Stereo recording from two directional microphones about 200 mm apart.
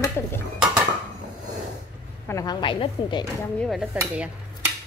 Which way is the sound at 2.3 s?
20° left (ahead or behind).